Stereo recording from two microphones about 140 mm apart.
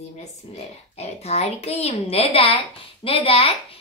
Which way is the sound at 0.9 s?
45° left (ahead or behind).